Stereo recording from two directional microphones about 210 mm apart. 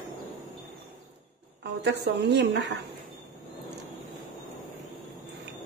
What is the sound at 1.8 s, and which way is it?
Speech, 55° right (ahead or behind).